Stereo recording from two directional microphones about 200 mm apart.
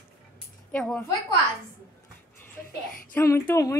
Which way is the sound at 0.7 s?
5° left (ahead or behind).